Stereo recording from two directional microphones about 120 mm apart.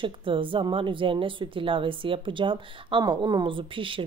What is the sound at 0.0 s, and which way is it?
A woman's voice, 45° right (ahead or behind).